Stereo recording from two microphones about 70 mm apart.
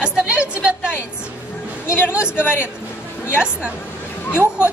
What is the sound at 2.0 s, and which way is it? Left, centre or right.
Speech, centre.